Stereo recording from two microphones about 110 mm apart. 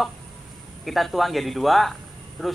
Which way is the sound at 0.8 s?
Centre (ahead or behind).